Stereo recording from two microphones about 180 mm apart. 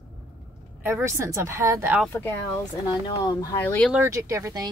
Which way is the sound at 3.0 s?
20° left (ahead or behind).